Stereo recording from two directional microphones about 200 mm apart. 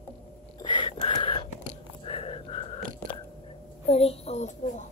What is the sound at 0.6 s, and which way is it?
Whispering, 25° left (ahead or behind).